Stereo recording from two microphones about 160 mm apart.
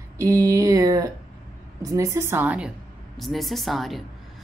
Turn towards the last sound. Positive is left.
turn(degrees=0)  # may be behind; listen again after turning